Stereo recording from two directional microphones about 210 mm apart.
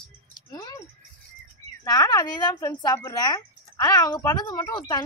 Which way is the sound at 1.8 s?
15° left (ahead or behind).